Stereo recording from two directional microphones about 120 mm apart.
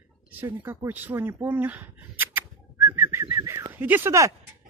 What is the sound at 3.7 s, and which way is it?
Speech, 15° right (ahead or behind).